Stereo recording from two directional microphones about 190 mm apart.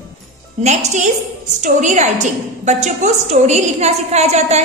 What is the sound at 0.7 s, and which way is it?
A woman's voice, 40° right (ahead or behind).